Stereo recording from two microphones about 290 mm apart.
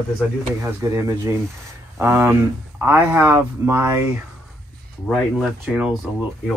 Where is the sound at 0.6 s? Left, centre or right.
Centre.